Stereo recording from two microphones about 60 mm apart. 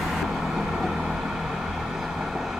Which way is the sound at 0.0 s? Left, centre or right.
Centre.